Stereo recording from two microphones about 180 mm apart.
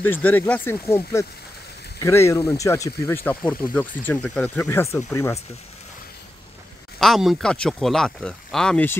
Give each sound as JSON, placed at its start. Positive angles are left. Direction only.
{"t": 0.0, "sound": "speech", "side_deg": 10}
{"t": 7.0, "sound": "speech", "side_deg": 0}